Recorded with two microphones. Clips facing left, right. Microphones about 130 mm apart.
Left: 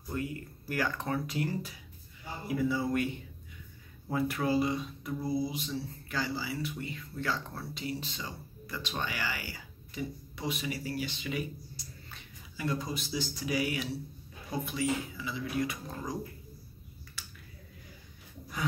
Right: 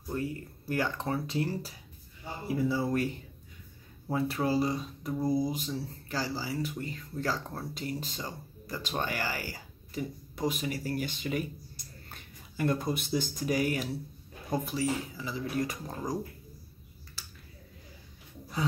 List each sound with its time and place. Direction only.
0.1 s speech: 30° right (ahead or behind)
17.2 s finger snapping: 35° right (ahead or behind)